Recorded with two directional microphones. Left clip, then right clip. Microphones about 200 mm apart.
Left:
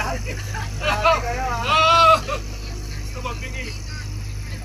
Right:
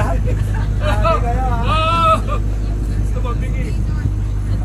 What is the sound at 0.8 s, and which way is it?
Vehicle, 50° right (ahead or behind).